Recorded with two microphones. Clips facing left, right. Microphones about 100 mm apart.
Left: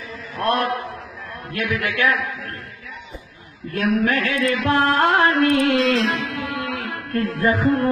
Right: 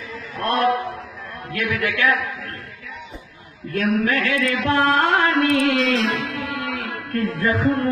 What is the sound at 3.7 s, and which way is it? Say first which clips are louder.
Music: even; 35° left (ahead or behind).